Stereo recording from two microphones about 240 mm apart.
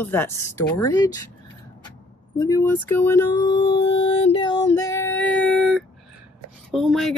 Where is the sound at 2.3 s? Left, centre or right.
Centre.